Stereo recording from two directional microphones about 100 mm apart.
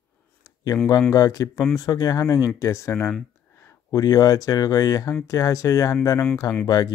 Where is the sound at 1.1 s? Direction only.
35° left (ahead or behind).